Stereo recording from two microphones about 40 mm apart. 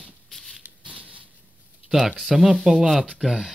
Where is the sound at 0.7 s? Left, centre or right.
Right.